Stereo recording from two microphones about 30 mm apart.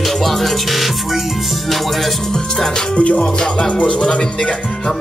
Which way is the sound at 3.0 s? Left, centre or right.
Left.